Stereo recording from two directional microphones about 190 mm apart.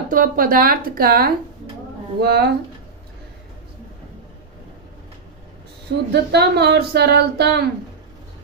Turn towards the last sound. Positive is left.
turn(degrees=-60)  # may be behind; listen again after turning